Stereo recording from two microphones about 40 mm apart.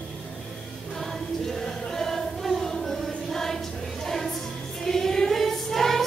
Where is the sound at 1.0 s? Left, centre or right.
Centre.